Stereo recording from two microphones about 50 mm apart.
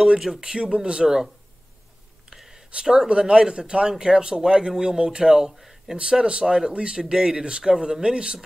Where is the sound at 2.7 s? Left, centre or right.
Centre.